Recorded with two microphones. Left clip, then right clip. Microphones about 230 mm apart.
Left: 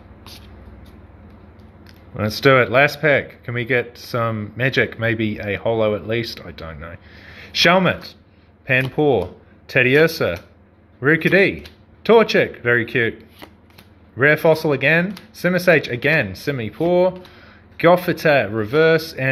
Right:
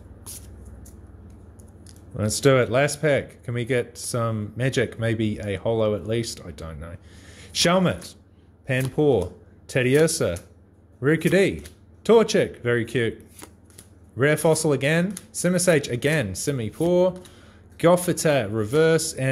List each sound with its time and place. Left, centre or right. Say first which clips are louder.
2.1 s speech: left 5 dB; centre
14.1 s speech: left 6 dB; centre